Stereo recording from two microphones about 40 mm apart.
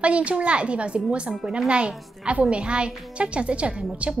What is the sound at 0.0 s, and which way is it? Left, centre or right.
A woman's voice, right.